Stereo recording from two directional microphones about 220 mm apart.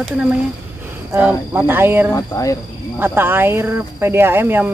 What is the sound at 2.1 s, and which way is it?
Speech, 15° left (ahead or behind).